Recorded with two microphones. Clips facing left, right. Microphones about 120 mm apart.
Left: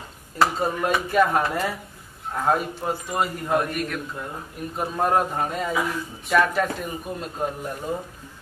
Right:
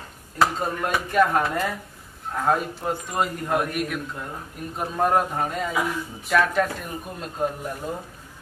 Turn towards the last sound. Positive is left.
turn(degrees=0)  # may be behind; listen again after turning